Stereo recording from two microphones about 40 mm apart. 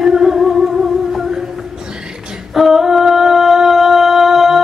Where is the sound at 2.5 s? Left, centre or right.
Centre.